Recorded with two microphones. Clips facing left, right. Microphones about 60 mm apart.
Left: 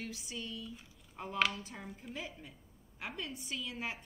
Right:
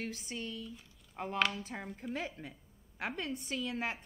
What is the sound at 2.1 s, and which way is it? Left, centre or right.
A woman's voice, right.